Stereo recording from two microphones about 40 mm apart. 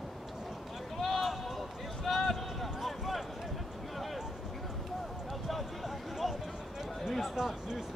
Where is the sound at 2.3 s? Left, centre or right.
Centre.